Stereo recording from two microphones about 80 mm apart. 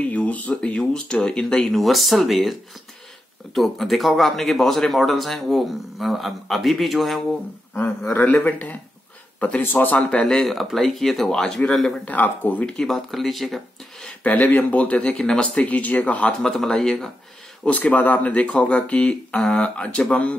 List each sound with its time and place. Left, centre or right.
0.0 s speech: centre
8.1 s speech: left; by 11.9 s centre
12.0 s speech: left
12.7 s speech: centre
14.2 s speech: centre
16.4 s speech: centre
17.6 s speech: centre